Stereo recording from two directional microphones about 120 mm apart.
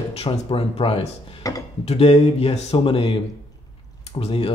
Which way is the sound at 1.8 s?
55° left (ahead or behind).